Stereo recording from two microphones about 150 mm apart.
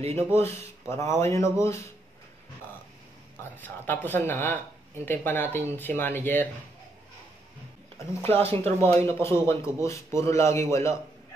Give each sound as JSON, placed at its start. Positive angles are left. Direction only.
{"t": 0.0, "sound": "speech", "side_deg": -45}
{"t": 0.8, "sound": "a man's voice", "side_deg": 20}
{"t": 3.6, "sound": "speech", "side_deg": 15}
{"t": 8.3, "sound": "speech", "side_deg": -40}
{"t": 8.8, "sound": "a man's voice", "side_deg": 20}